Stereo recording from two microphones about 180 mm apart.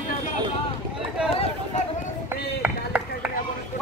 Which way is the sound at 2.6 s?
10° right (ahead or behind).